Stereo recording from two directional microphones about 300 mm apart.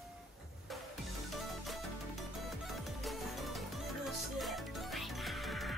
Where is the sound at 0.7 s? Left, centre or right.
Centre.